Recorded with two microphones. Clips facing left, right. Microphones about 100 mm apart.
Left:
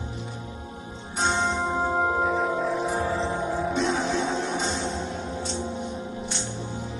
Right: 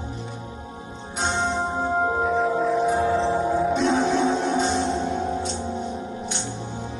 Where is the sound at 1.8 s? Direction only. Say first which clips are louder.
Right 1 dB; centre (ahead or behind).